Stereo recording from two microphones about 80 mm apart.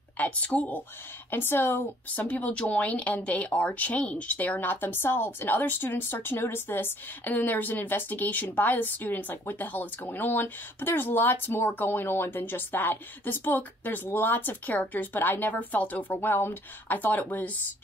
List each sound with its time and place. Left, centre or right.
0.2 s a woman's voice: centre
1.3 s a woman's voice: left